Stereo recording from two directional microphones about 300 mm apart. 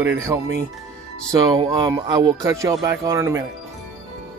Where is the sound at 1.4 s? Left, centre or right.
Centre.